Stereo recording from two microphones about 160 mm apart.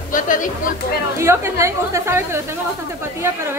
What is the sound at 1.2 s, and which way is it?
A woman's voice, 15° right (ahead or behind).